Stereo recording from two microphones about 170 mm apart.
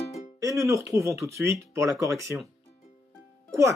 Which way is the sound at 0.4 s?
20° right (ahead or behind).